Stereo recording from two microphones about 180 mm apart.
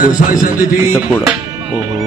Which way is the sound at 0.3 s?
50° left (ahead or behind).